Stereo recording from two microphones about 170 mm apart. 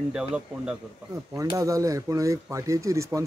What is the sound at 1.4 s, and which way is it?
Speech, 20° right (ahead or behind).